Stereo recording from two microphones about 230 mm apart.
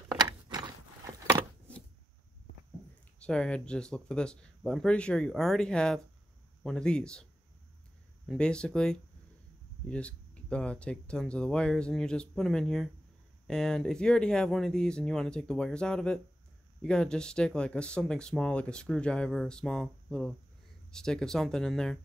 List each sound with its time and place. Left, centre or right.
0.1 s a sound: centre
3.2 s speech: centre
8.3 s speech: centre